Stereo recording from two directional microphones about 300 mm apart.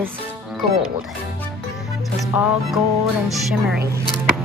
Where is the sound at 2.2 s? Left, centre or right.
Centre.